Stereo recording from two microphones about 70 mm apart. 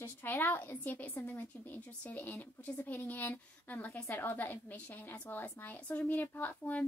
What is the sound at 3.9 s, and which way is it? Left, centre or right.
A woman's voice, left.